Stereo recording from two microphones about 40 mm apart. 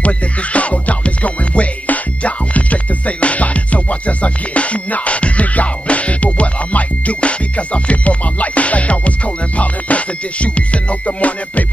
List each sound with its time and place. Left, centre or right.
0.0 s music: left